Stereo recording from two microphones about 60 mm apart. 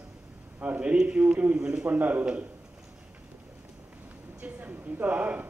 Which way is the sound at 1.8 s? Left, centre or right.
Right.